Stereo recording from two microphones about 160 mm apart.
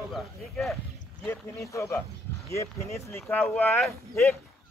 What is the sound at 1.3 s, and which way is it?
Speech, 20° left (ahead or behind).